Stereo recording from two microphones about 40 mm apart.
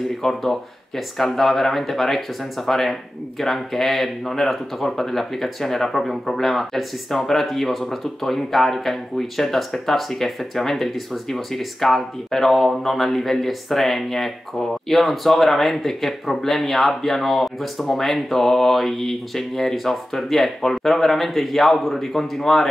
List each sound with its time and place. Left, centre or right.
0.3 s speech: centre